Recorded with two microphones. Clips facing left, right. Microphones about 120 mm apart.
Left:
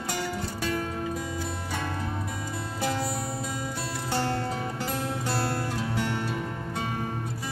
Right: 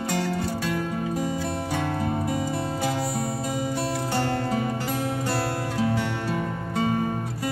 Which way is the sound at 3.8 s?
45° right (ahead or behind).